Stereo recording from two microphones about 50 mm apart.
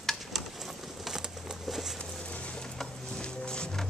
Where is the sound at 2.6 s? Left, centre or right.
Centre.